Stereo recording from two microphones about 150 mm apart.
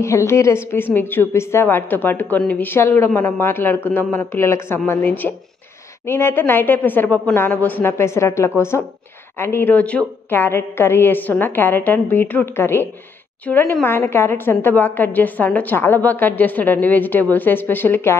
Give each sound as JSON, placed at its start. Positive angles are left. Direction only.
{"t": 0.0, "sound": "a woman's voice", "side_deg": 20}